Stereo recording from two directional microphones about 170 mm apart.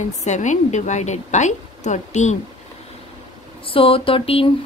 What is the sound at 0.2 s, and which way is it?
A woman's voice, 45° left (ahead or behind).